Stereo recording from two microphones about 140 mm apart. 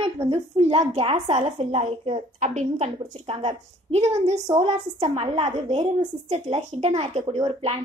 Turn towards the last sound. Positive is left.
turn(degrees=-45)  # may be behind; listen again after turning